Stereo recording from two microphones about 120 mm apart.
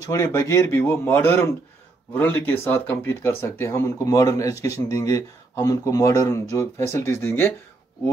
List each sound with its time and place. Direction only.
0.0 s speech: 25° left (ahead or behind)